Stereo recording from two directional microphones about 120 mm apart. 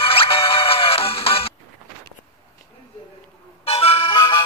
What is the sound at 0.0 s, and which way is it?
Music, 50° left (ahead or behind).